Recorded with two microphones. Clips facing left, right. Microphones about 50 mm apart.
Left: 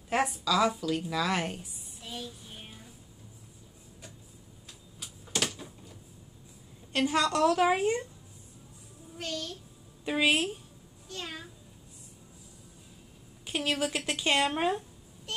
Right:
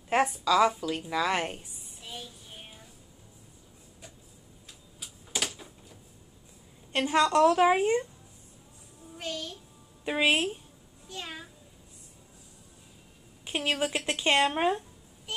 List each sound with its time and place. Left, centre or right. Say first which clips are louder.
0.5 s a woman's voice: right 3 dB; right
2.0 s child singing: left 2 dB; centre
4.6 s a sound: even; centre
6.9 s a woman's voice: right 3 dB; centre
9.1 s a child's voice: even; centre
11.1 s a woman's voice: even; centre
13.5 s a woman's voice: right 1 dB; centre
15.3 s a sound: right 1 dB; centre